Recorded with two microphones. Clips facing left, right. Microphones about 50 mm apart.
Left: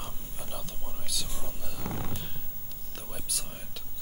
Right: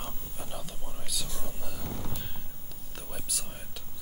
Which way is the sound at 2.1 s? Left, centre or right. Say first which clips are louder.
Even; centre.